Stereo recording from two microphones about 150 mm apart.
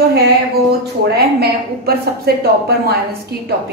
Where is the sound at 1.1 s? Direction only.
90° right.